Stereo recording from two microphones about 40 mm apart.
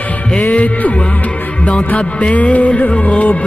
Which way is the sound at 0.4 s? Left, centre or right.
Left.